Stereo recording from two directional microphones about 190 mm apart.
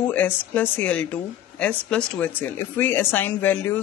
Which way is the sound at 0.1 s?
10° left (ahead or behind).